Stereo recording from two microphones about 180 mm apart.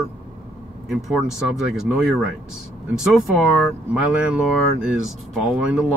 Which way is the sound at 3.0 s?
Centre (ahead or behind).